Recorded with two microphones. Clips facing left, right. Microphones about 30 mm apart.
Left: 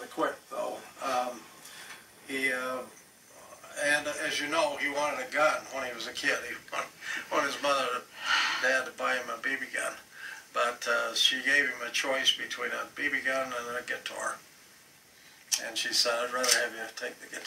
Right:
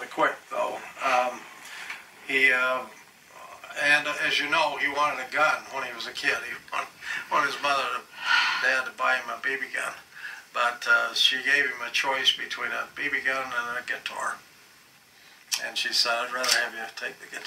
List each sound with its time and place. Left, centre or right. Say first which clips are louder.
1.0 s a sound: right 7 dB; right
3.3 s speech: right 5 dB; right
15.5 s speech: right 3 dB; right